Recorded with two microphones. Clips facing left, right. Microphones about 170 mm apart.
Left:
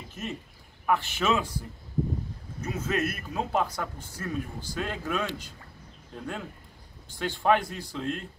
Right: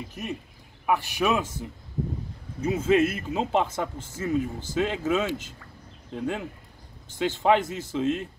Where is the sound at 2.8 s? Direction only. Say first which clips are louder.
Right 8 dB; 25° right (ahead or behind).